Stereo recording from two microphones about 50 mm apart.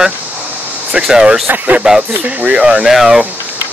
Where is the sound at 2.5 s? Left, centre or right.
Centre.